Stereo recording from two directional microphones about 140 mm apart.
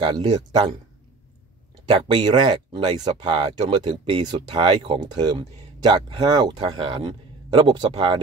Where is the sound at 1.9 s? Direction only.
40° right (ahead or behind).